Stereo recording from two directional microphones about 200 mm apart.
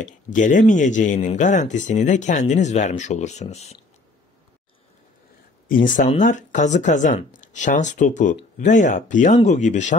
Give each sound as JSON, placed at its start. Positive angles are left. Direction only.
{"t": 0.0, "sound": "speech", "side_deg": 40}
{"t": 5.7, "sound": "speech", "side_deg": 40}